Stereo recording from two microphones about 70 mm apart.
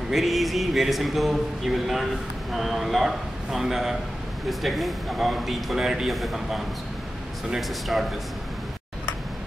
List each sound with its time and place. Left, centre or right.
0.1 s speech: centre